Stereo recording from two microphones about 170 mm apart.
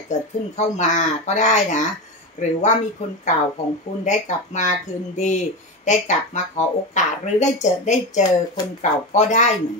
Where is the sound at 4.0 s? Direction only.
45° left (ahead or behind).